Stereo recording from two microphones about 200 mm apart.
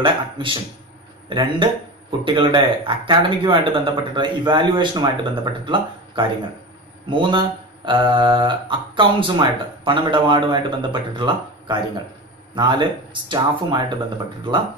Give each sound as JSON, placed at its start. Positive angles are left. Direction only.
{"t": 0.0, "sound": "speech", "side_deg": -25}